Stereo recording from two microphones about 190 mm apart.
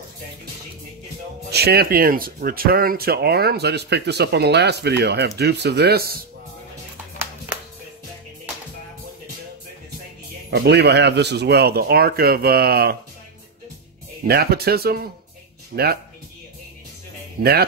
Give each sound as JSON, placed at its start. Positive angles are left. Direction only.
{"t": 1.5, "sound": "speech", "side_deg": -55}
{"t": 10.5, "sound": "speech", "side_deg": -65}
{"t": 14.2, "sound": "speech", "side_deg": -55}
{"t": 17.4, "sound": "speech", "side_deg": -55}